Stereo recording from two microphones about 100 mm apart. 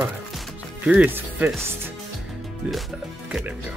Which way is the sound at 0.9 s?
15° right (ahead or behind).